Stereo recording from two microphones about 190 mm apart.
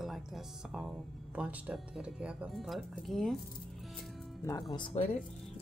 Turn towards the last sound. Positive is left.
turn(degrees=30)  # may be behind; listen again after turning